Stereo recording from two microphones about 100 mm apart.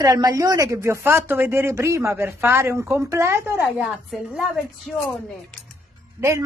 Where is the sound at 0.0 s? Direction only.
40° right (ahead or behind); by 3.9 s 20° right (ahead or behind).